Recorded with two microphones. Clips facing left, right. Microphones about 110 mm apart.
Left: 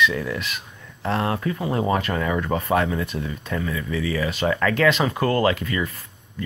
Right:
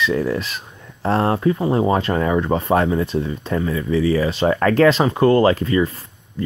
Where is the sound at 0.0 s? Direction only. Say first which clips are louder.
Right 3 dB; 35° right (ahead or behind).